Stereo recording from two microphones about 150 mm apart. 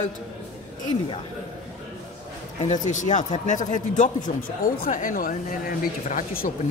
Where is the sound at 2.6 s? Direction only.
55° left (ahead or behind).